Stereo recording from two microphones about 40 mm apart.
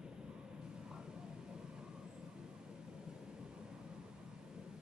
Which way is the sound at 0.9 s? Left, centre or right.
Centre.